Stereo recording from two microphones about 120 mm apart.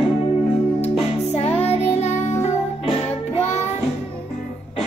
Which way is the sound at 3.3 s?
65° left (ahead or behind).